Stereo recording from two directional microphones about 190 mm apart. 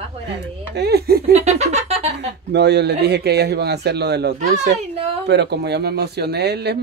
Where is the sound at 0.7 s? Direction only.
60° right (ahead or behind).